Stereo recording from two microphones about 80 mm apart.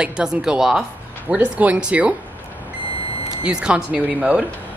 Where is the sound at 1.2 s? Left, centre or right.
Centre.